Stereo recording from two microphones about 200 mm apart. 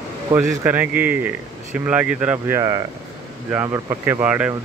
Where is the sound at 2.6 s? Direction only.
20° right (ahead or behind).